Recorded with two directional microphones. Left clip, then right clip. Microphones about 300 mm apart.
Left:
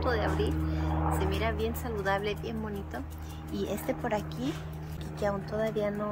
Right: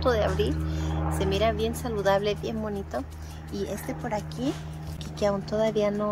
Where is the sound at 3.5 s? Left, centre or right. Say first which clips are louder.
Even; centre.